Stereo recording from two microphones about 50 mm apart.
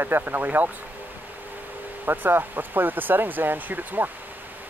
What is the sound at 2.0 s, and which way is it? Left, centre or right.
Speech, right.